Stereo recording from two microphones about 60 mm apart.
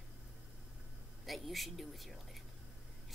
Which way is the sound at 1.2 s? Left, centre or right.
Centre.